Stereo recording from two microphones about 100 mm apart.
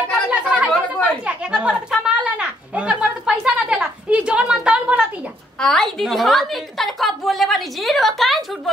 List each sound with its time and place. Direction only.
0.3 s chatter: 10° right (ahead or behind)
0.7 s chatter: 15° left (ahead or behind)
1.2 s a woman's voice: 10° right (ahead or behind)
5.6 s a woman's voice: 5° left (ahead or behind)